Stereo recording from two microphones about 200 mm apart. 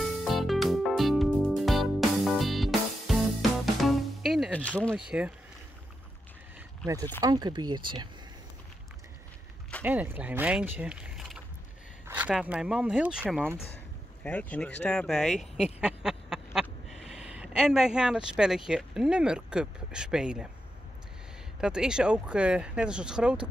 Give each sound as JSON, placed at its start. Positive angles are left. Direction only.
{"t": 0.0, "sound": "music", "side_deg": 0}
{"t": 7.2, "sound": "speech", "side_deg": -20}
{"t": 9.8, "sound": "speech", "side_deg": -10}
{"t": 14.2, "sound": "speech", "side_deg": 5}
{"t": 15.6, "sound": "a sound", "side_deg": -5}
{"t": 18.7, "sound": "speech", "side_deg": -5}
{"t": 21.5, "sound": "speech", "side_deg": -5}